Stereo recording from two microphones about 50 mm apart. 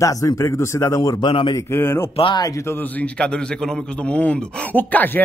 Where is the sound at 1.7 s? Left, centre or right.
Left.